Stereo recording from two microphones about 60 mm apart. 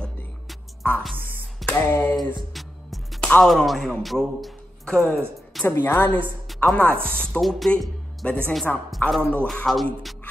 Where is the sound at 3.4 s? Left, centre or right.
Centre.